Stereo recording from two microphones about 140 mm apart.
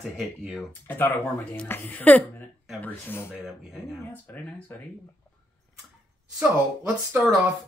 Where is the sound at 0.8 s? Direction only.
15° left (ahead or behind).